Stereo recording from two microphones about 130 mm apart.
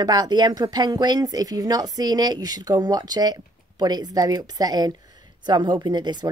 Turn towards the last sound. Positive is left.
turn(degrees=-35)  # may be behind; listen again after turning